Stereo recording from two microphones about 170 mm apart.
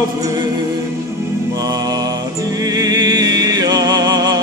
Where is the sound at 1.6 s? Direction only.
25° right (ahead or behind).